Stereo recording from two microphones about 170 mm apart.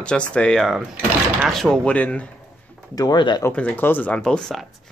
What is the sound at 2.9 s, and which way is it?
Speech, 25° left (ahead or behind).